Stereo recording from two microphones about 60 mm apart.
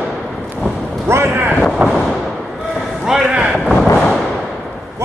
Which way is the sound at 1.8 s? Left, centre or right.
Right.